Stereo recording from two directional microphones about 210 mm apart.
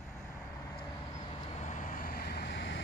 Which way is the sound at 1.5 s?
35° left (ahead or behind).